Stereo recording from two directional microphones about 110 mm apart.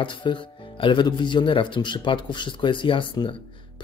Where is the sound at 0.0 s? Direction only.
45° left (ahead or behind).